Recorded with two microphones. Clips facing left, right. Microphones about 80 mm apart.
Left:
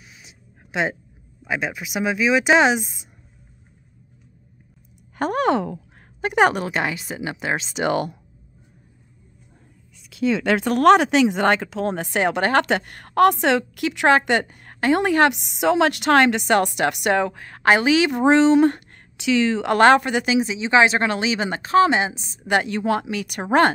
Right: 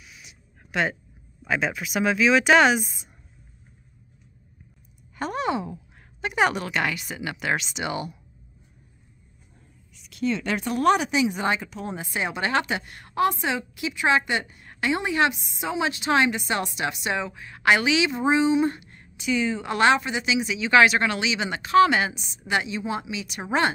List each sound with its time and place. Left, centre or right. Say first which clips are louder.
0.0 s a sound: left 1 dB; left
1.4 s speech: even; centre
5.1 s a sound: left 7 dB; left
6.2 s a woman's voice: left 5 dB; left
6.6 s speech: left 2 dB; left
7.7 s a woman's voice: left 8 dB; left
10.4 s a woman's voice: left 7 dB; left
15.3 s a woman's voice: left 10 dB; left
18.1 s speech: left 8 dB; left
19.1 s a woman's voice: left 6 dB; left
19.7 s a woman's voice: left 6 dB; left
20.3 s speech: left 1 dB; left
22.7 s a woman's voice: left 7 dB; left